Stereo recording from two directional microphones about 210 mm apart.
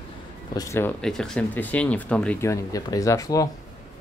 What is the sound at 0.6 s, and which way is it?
Speech, 10° left (ahead or behind).